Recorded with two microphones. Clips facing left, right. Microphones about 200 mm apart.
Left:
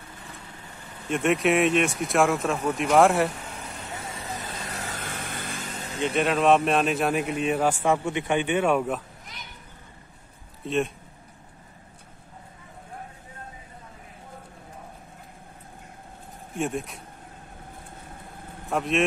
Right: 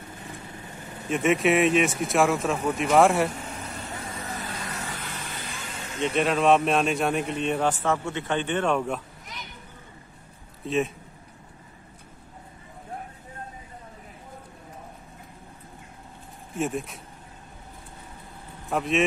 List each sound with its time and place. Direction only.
1.1 s speech: centre (ahead or behind)
3.9 s vehicle: 15° left (ahead or behind)
4.7 s vehicle: 50° left (ahead or behind)
5.8 s vehicle: 35° left (ahead or behind)
6.0 s speech: centre (ahead or behind)
10.6 s speech: centre (ahead or behind)
16.5 s speech: centre (ahead or behind)
18.7 s speech: centre (ahead or behind)